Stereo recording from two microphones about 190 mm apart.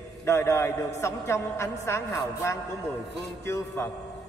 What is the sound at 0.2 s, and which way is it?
A man's voice, 15° left (ahead or behind).